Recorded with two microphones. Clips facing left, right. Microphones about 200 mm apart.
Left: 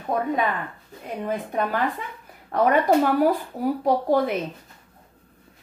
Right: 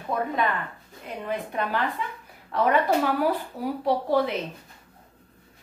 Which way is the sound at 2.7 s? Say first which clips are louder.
Left 4 dB; 45° left (ahead or behind).